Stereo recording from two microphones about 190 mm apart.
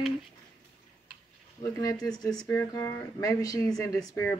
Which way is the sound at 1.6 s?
20° left (ahead or behind).